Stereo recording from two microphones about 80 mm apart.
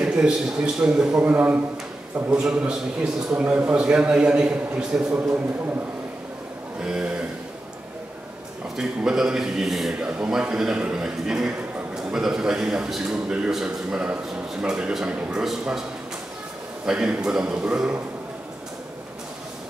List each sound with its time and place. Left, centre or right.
0.0 s a man's voice: centre
1.2 s a man's voice: centre
6.8 s a man's voice: centre
8.7 s a man's voice: centre
15.1 s speech: centre
15.4 s a man's voice: centre
16.8 s a man's voice: centre